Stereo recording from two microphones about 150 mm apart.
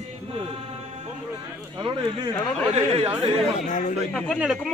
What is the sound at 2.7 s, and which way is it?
Speech, 45° right (ahead or behind).